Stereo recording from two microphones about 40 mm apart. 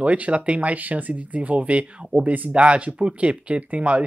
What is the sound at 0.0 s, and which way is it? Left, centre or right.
Speech, right.